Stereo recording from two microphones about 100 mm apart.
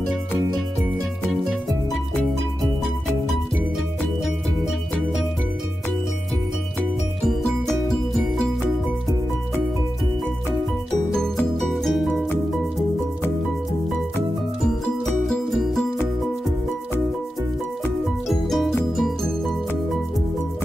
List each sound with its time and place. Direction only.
1.2 s music: centre (ahead or behind)
7.2 s music: 5° left (ahead or behind)
11.6 s music: centre (ahead or behind)
15.0 s music: 5° left (ahead or behind)
18.3 s music: centre (ahead or behind)